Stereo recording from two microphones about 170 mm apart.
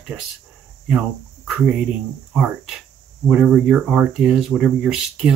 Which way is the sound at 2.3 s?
5° right (ahead or behind).